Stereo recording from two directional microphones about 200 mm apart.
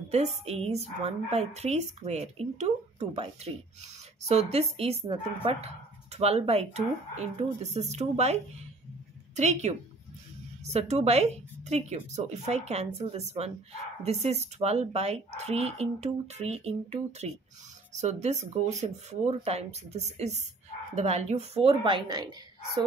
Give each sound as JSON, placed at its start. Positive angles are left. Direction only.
{"t": 0.1, "sound": "speech", "side_deg": -35}
{"t": 9.4, "sound": "a woman's voice", "side_deg": -35}